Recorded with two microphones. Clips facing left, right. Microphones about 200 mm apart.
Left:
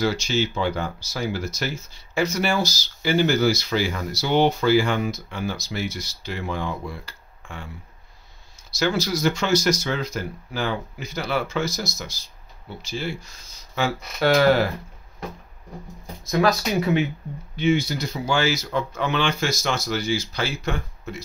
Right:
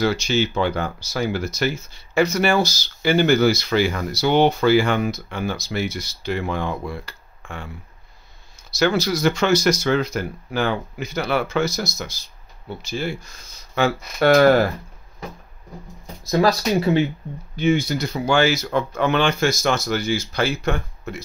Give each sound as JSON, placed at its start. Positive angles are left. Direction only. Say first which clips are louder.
{"t": 0.0, "sound": "speech", "louder": "right 3 dB", "side_deg": -60}
{"t": 8.6, "sound": "speech", "louder": "right 4 dB", "side_deg": -60}
{"t": 16.3, "sound": "speech", "louder": "right 3 dB", "side_deg": -30}
{"t": 17.6, "sound": "speech", "louder": "right 2 dB", "side_deg": -50}